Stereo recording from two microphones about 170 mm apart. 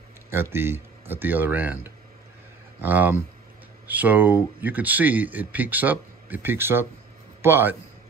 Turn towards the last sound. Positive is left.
turn(degrees=-10)  # may be behind; listen again after turning